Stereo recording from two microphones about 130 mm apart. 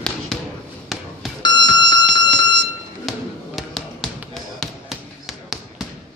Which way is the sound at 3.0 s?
Centre (ahead or behind).